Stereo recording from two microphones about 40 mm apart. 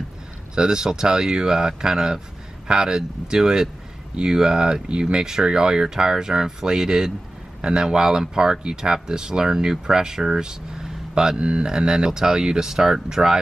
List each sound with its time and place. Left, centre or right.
0.6 s speech: centre